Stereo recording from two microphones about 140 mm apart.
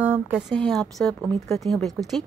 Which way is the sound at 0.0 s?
10° right (ahead or behind).